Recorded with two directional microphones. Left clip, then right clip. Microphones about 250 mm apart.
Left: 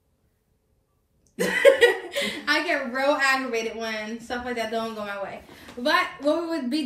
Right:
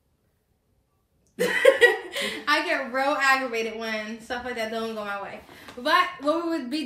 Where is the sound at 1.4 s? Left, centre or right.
Centre.